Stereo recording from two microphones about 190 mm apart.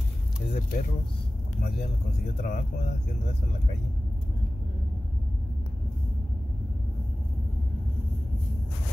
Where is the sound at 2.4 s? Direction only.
55° left (ahead or behind).